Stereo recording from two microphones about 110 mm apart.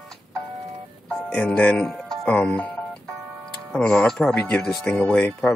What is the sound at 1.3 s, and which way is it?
Speech, 10° left (ahead or behind).